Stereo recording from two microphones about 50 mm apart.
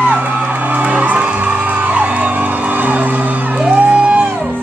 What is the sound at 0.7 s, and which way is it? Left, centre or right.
Music, right.